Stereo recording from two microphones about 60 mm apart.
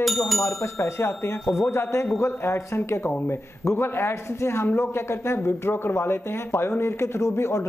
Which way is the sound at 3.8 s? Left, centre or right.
Left.